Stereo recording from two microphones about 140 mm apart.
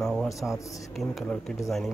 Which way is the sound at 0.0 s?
Centre (ahead or behind).